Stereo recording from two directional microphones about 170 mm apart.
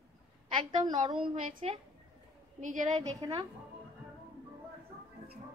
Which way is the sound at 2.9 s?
25° right (ahead or behind).